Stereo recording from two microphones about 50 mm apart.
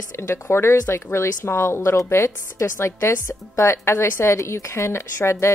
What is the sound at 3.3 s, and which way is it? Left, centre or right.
Speech, left.